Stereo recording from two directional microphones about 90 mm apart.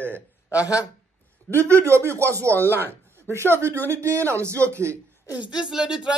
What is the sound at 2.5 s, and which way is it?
Speech, 25° left (ahead or behind).